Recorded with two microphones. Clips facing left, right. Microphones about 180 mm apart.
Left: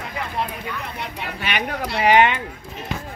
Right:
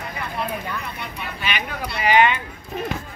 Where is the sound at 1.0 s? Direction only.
75° left (ahead or behind).